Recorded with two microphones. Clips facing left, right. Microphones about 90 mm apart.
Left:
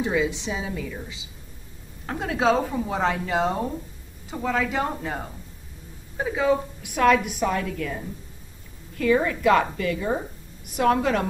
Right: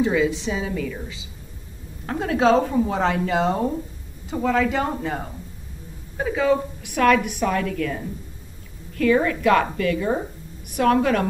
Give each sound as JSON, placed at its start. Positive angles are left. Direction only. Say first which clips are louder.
{"t": 0.0, "sound": "a woman's voice", "louder": "right 4 dB", "side_deg": 15}
{"t": 2.0, "sound": "a woman's voice", "louder": "right 4 dB", "side_deg": 10}
{"t": 2.6, "sound": "a woman's voice", "louder": "right 4 dB", "side_deg": -5}